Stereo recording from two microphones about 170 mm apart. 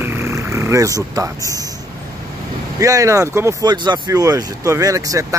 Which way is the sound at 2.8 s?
20° right (ahead or behind).